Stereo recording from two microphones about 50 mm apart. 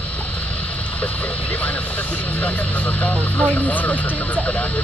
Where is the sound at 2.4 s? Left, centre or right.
Left.